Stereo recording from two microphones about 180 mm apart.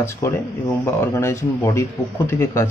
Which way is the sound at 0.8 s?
15° left (ahead or behind).